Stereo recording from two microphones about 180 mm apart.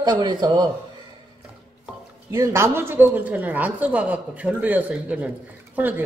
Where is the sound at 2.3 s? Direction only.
15° right (ahead or behind).